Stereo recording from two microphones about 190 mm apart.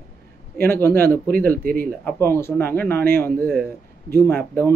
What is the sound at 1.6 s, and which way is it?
Speech, 50° right (ahead or behind).